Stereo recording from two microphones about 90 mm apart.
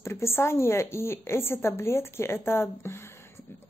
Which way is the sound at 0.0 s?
30° left (ahead or behind).